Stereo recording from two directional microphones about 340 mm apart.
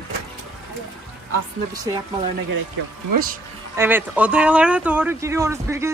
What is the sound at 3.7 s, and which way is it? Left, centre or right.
Speech, centre.